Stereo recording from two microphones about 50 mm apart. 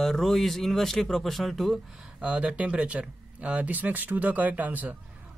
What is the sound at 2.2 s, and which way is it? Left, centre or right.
Speech, right.